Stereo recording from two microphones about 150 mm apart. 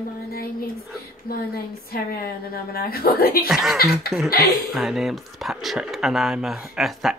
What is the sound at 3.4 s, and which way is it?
Speech, centre (ahead or behind).